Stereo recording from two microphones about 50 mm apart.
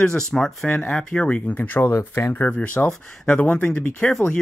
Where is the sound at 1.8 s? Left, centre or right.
Left.